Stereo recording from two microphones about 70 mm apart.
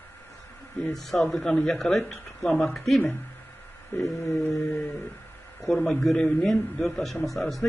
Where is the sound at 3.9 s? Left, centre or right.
Left.